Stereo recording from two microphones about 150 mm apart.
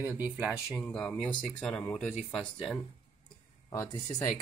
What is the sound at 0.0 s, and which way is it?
Speech, 10° right (ahead or behind).